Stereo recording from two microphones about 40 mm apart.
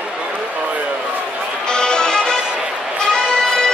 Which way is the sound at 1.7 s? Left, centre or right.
Left.